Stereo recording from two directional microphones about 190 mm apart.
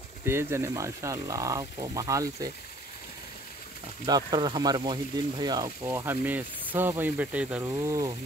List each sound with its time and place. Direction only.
0.2 s speech: 15° right (ahead or behind)
4.0 s speech: 25° right (ahead or behind)